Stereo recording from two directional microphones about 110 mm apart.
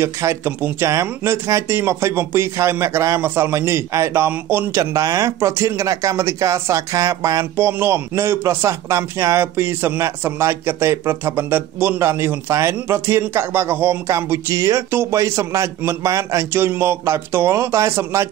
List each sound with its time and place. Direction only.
0.0 s speech: 25° right (ahead or behind)
4.9 s speech: 30° right (ahead or behind)